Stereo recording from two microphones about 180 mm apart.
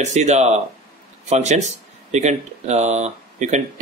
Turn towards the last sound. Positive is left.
turn(degrees=-40)  # may be behind; listen again after turning